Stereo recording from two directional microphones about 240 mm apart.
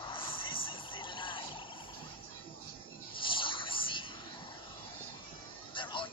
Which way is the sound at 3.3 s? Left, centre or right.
Left.